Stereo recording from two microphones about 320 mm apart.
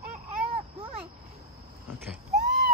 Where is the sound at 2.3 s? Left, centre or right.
Right.